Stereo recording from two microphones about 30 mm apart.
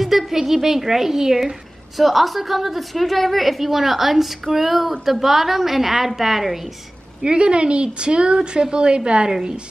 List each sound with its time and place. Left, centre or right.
0.3 s a woman's voice: centre
2.0 s a woman's voice: centre
7.2 s a woman's voice: right
9.3 s a woman's voice: right